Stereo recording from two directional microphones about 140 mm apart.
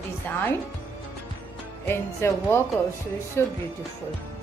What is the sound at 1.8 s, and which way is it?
A woman's voice, 15° left (ahead or behind).